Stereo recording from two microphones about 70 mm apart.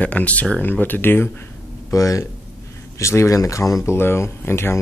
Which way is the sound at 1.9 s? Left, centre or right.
Left.